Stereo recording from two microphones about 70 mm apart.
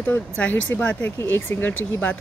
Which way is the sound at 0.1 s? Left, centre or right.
Left.